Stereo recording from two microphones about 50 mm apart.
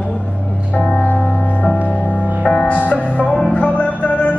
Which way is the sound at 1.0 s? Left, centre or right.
Left.